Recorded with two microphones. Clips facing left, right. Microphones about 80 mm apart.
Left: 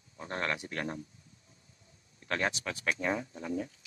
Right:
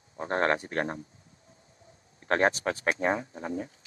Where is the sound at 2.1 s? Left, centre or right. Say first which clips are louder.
Right 8 dB; right.